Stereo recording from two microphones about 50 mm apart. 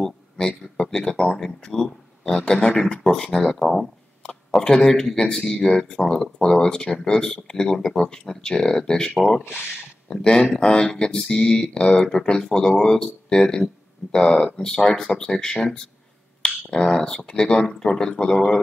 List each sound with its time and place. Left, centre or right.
0.4 s speech: centre